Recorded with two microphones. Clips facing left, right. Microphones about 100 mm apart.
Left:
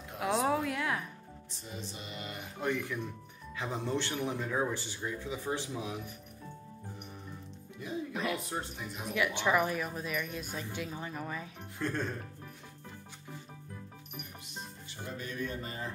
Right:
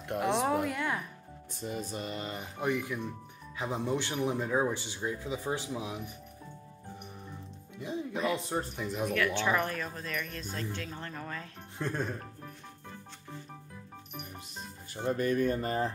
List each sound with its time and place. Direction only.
0.2 s a sound: centre (ahead or behind)
0.7 s music: centre (ahead or behind)
1.5 s music: 55° right (ahead or behind); by 2.4 s 35° right (ahead or behind)
2.6 s speech: 15° right (ahead or behind)
7.8 s speech: 20° right (ahead or behind)
9.1 s speech: 15° left (ahead or behind)
11.8 s speech: 15° right (ahead or behind)
15.0 s music: 55° right (ahead or behind)